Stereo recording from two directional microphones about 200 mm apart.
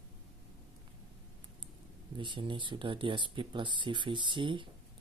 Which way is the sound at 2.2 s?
25° right (ahead or behind).